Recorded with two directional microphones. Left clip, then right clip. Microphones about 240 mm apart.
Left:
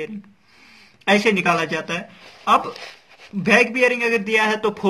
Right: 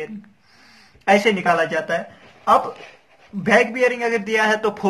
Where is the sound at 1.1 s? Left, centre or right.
Left.